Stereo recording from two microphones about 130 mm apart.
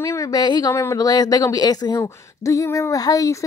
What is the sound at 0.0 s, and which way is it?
A woman's voice, 25° left (ahead or behind).